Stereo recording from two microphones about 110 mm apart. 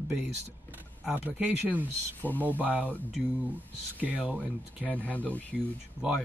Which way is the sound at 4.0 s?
15° right (ahead or behind).